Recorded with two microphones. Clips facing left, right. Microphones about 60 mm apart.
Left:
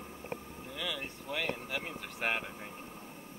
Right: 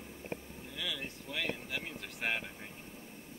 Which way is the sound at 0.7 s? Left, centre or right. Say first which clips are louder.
Left 2 dB; left.